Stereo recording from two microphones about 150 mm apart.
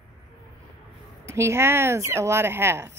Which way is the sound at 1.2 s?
20° right (ahead or behind).